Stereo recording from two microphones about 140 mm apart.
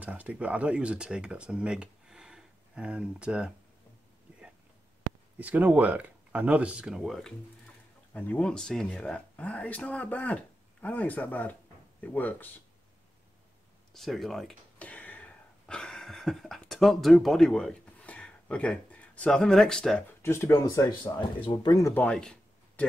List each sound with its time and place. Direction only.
0.0 s speech: 10° right (ahead or behind)
5.4 s speech: 10° right (ahead or behind); by 12.4 s 10° left (ahead or behind)
13.9 s a sound: centre (ahead or behind)
20.2 s speech: 20° left (ahead or behind)
21.0 s speech: 35° left (ahead or behind)
21.9 s a sound: 10° left (ahead or behind)